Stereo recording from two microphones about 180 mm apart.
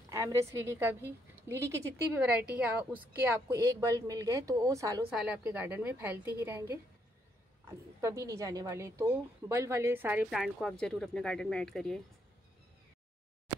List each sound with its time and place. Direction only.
0.1 s a woman's voice: 15° right (ahead or behind)
5.1 s a woman's voice: 5° right (ahead or behind)
8.0 s a woman's voice: 15° right (ahead or behind); by 12.0 s centre (ahead or behind)